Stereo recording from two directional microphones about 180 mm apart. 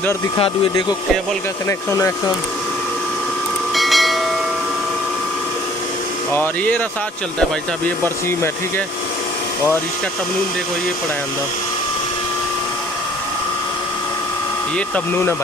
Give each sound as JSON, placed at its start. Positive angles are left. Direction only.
{"t": 0.4, "sound": "speech", "side_deg": 25}
{"t": 1.7, "sound": "speech", "side_deg": 15}
{"t": 3.7, "sound": "a sound", "side_deg": 0}
{"t": 6.3, "sound": "speech", "side_deg": 10}
{"t": 8.0, "sound": "speech", "side_deg": 10}